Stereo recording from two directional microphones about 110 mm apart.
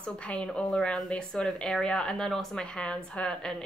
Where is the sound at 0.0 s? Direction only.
10° left (ahead or behind).